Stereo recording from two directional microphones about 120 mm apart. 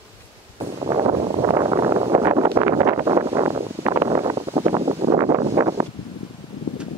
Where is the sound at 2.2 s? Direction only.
30° right (ahead or behind).